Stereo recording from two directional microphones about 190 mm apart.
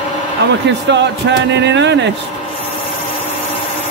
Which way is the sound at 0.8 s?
65° right (ahead or behind).